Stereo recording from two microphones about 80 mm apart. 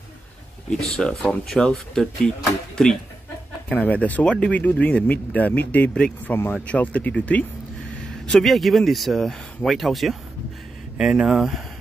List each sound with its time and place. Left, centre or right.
0.7 s speech: centre
3.7 s speech: centre
8.3 s speech: centre